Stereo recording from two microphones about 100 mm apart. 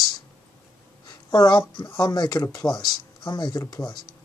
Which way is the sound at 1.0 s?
45° left (ahead or behind).